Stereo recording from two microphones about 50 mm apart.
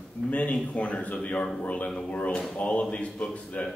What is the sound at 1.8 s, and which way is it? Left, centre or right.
Speech, centre.